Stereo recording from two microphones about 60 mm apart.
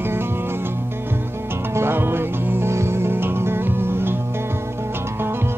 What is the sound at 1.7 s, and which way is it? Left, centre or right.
Music, right.